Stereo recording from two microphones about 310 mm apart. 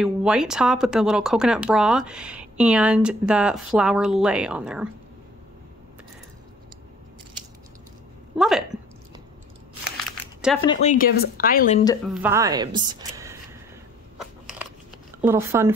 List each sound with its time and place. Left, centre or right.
0.0 s speech: centre
8.4 s speech: centre
9.9 s a sound: centre
10.6 s speech: centre
12.1 s a woman's voice: centre
14.4 s a sound: centre
15.2 s speech: centre